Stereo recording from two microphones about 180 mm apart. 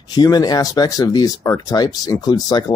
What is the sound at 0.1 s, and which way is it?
Speech, 20° left (ahead or behind).